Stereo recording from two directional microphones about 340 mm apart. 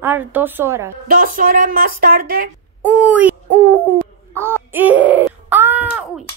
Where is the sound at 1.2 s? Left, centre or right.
Right.